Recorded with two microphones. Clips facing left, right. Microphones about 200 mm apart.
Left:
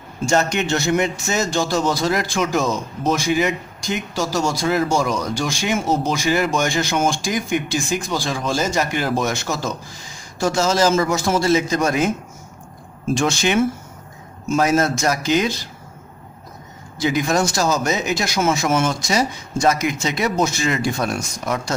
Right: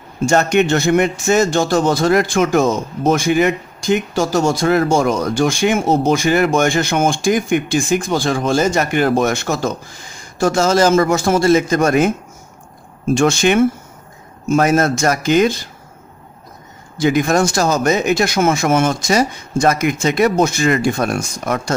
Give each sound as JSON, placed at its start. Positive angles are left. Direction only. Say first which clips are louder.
{"t": 0.2, "sound": "a man's voice", "louder": "right 5 dB", "side_deg": -55}
{"t": 13.1, "sound": "speech", "louder": "right 5 dB", "side_deg": -50}
{"t": 17.0, "sound": "speech", "louder": "right 5 dB", "side_deg": -55}